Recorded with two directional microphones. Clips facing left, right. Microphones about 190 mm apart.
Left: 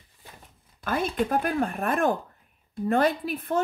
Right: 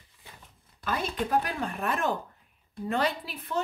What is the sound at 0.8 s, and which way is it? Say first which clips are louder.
Speech: left 4 dB; 50° left (ahead or behind).